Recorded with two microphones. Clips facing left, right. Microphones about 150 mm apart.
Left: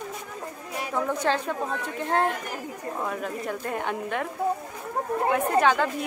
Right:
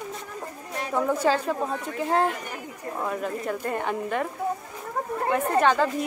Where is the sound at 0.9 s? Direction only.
5° right (ahead or behind).